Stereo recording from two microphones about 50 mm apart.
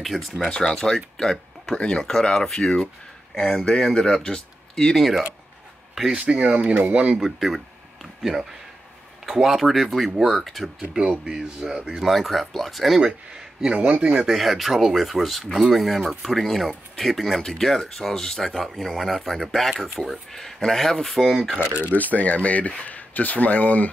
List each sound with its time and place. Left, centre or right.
0.0 s speech: centre
0.5 s speech: centre
6.1 s speech: right
7.2 s speech: centre
11.1 s speech: centre
12.0 s speech: centre
13.0 s speech: centre
13.7 s speech: right
14.2 s speech: centre
21.9 s speech: left